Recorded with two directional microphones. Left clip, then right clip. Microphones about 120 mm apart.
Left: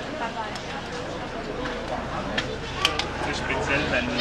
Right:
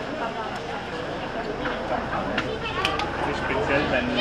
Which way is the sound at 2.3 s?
20° left (ahead or behind).